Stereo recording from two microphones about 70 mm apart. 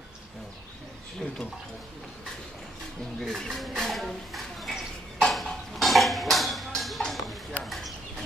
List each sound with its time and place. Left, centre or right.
3.2 s speech: centre
5.2 s a sound: centre
7.6 s bird: centre